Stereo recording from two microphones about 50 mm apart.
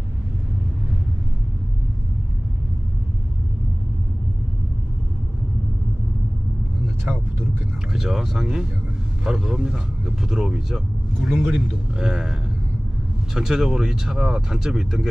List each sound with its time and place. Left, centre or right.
7.9 s speech: centre
11.2 s speech: right; by 15.0 s centre